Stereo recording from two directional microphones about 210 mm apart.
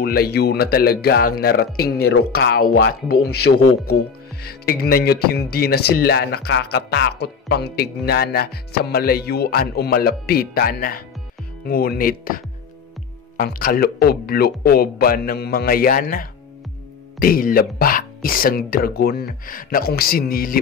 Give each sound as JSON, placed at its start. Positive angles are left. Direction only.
{"t": 0.0, "sound": "speech", "side_deg": 45}